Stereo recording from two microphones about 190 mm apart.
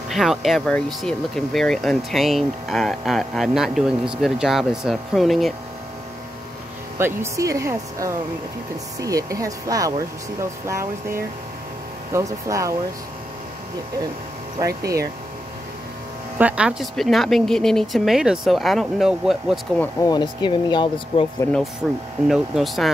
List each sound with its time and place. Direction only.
0.1 s speech: centre (ahead or behind)
7.0 s speech: 15° right (ahead or behind)
16.3 s speech: 5° right (ahead or behind)
19.8 s speech: 20° left (ahead or behind)
21.4 s speech: 5° left (ahead or behind)